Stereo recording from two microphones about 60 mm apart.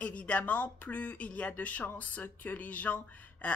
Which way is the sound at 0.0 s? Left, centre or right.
Left.